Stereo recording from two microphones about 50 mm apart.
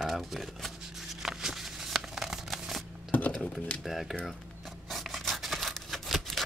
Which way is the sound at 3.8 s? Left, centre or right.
Centre.